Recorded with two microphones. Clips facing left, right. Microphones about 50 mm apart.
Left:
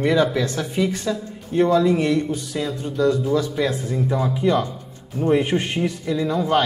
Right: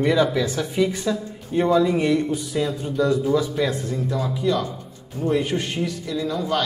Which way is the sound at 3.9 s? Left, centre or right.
Left.